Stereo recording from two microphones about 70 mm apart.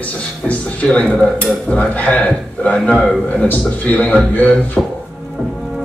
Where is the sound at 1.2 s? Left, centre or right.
Left.